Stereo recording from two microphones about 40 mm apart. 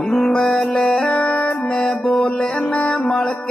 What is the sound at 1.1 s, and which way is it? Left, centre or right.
Music, left.